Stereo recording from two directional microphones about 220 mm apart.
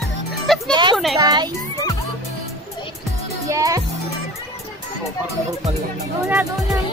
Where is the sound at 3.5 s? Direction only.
15° right (ahead or behind).